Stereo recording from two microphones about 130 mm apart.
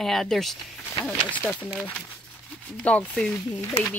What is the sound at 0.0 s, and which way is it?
Speech, centre (ahead or behind).